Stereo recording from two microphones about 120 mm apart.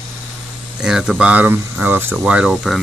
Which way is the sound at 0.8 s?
5° right (ahead or behind).